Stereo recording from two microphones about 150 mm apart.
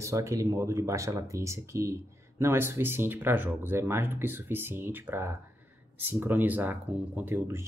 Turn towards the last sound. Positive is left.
turn(degrees=-15)  # may be behind; listen again after turning